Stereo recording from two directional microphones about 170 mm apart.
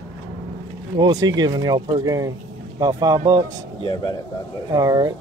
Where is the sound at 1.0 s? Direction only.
25° right (ahead or behind).